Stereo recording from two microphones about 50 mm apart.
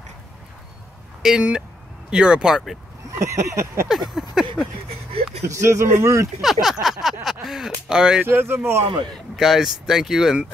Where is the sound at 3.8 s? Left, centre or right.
Centre.